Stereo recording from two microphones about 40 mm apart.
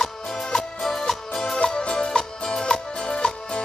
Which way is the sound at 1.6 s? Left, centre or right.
Left.